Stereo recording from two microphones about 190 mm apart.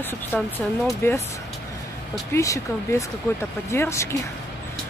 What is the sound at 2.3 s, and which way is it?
Speech, 15° left (ahead or behind).